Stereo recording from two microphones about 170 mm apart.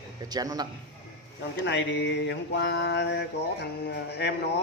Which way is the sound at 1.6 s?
90° left.